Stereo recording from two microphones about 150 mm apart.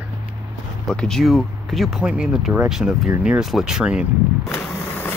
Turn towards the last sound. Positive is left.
turn(degrees=10)  # may be behind; listen again after turning